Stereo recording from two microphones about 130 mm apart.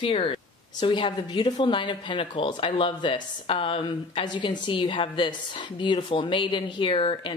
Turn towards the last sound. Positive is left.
turn(degrees=40)  # may be behind; listen again after turning